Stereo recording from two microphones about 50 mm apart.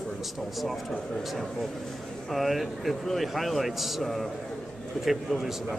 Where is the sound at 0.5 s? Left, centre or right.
Centre.